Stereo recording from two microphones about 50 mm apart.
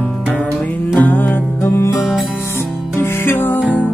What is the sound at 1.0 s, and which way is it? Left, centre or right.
Music, left.